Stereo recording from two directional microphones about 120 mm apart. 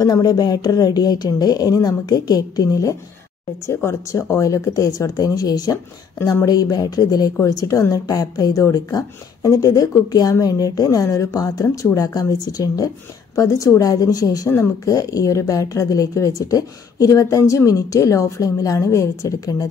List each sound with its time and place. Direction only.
0.0 s a woman's voice: 30° left (ahead or behind)